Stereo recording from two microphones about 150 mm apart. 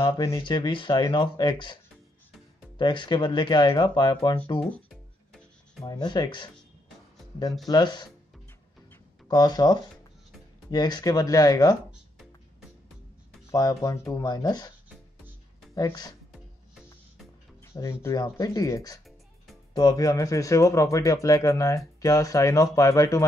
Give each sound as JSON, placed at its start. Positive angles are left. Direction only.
{"t": 0.0, "sound": "speech", "side_deg": 20}
{"t": 0.4, "sound": "speech", "side_deg": 30}
{"t": 2.8, "sound": "speech", "side_deg": 30}
{"t": 5.9, "sound": "speech", "side_deg": 30}
{"t": 7.6, "sound": "speech", "side_deg": 30}
{"t": 9.3, "sound": "speech", "side_deg": 25}
{"t": 13.5, "sound": "speech", "side_deg": 25}
{"t": 15.7, "sound": "speech", "side_deg": 25}
{"t": 17.6, "sound": "music", "side_deg": 20}
{"t": 18.0, "sound": "speech", "side_deg": 25}